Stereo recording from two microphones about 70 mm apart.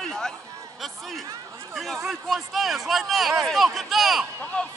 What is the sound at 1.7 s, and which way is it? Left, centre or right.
Speech, centre.